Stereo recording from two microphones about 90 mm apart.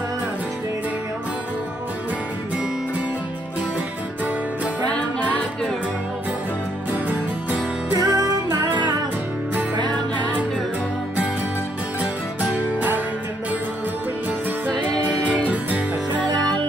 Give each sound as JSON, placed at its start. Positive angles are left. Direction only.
{"t": 4.8, "sound": "music", "side_deg": 15}
{"t": 8.0, "sound": "music", "side_deg": -40}
{"t": 12.0, "sound": "music", "side_deg": -15}
{"t": 15.4, "sound": "music", "side_deg": -15}